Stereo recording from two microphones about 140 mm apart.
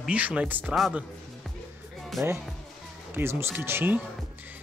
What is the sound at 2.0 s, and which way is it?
Music, centre (ahead or behind).